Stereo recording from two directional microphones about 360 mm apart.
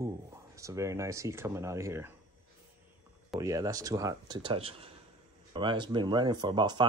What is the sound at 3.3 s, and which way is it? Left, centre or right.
Speech, centre.